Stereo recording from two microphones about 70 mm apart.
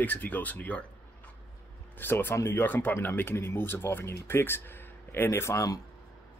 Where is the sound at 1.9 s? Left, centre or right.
Left.